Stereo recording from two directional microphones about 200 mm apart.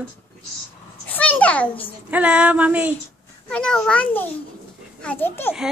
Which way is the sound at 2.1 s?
5° right (ahead or behind).